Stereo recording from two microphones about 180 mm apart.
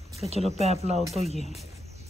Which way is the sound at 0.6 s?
35° right (ahead or behind).